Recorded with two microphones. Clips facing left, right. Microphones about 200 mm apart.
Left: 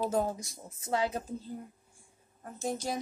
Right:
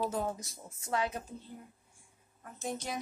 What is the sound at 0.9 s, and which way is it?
A woman's voice, 30° left (ahead or behind).